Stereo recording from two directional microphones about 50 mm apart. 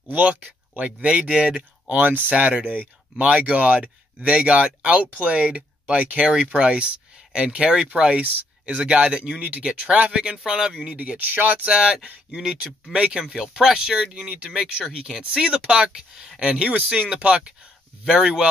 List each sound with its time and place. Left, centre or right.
0.1 s speech: right; by 10.7 s centre
10.7 s speech: right
11.6 s speech: centre
13.3 s speech: centre
14.1 s speech: right
14.6 s speech: centre